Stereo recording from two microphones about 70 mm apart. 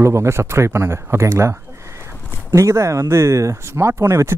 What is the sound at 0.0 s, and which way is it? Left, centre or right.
Speech, right.